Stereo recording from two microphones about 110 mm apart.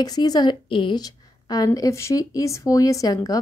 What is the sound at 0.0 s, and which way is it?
A woman's voice, 35° left (ahead or behind).